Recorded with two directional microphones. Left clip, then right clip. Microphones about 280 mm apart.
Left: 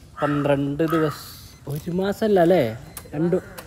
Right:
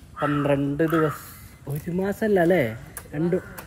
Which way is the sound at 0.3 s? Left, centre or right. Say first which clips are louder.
Left 1 dB; centre.